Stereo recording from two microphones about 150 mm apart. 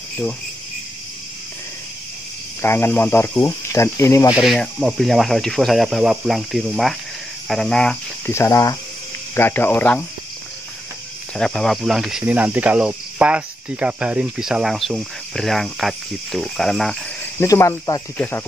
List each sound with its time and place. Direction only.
2.6 s speech: 15° left (ahead or behind)
4.4 s cricket: centre (ahead or behind)
8.3 s speech: 20° left (ahead or behind)
11.3 s cricket: 5° left (ahead or behind)
17.2 s speech: 15° left (ahead or behind)